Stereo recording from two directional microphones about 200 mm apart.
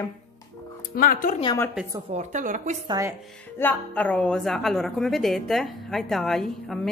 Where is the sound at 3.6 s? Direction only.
10° left (ahead or behind).